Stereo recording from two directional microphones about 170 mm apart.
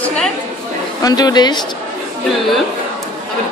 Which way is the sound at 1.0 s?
25° left (ahead or behind).